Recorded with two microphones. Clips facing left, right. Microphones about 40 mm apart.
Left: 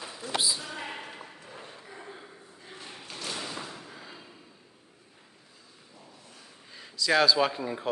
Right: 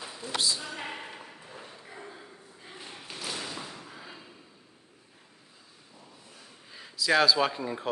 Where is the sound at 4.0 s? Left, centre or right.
Centre.